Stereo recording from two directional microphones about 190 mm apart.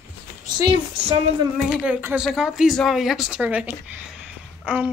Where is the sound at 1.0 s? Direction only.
25° right (ahead or behind).